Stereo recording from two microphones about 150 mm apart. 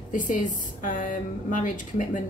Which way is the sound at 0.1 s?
60° left (ahead or behind).